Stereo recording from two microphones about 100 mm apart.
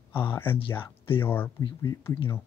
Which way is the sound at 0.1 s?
20° left (ahead or behind).